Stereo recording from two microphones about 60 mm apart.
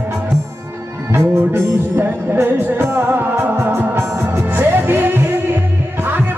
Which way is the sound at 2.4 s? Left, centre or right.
Right.